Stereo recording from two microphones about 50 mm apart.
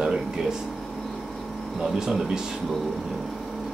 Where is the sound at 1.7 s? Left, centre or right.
Centre.